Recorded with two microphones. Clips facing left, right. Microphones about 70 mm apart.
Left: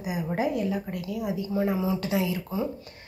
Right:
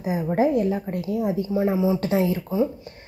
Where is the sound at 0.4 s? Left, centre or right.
Right.